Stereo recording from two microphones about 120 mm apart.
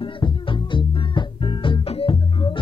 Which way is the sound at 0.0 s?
45° left (ahead or behind).